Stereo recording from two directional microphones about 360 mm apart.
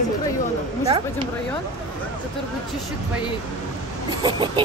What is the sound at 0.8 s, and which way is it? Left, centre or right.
Speech, centre.